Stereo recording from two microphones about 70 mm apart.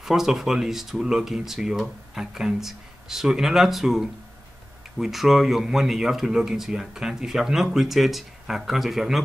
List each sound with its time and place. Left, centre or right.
0.0 s speech: centre